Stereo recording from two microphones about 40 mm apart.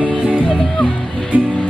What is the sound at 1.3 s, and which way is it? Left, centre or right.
Music, right.